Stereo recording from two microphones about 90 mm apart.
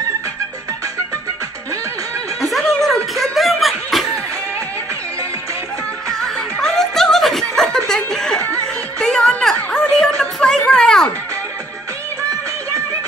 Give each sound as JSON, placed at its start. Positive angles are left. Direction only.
{"t": 2.4, "sound": "snicker", "side_deg": 0}
{"t": 6.0, "sound": "music", "side_deg": 5}
{"t": 9.8, "sound": "a sound", "side_deg": 10}